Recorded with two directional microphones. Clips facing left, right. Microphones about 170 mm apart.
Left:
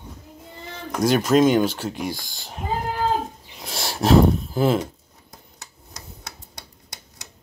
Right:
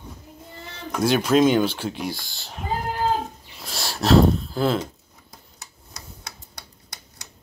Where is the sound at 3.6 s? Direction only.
20° left (ahead or behind).